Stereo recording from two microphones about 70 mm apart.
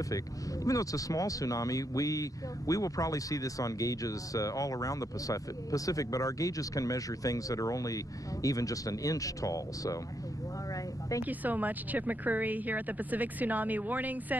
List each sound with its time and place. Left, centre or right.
0.7 s speech: left
11.2 s a woman's voice: right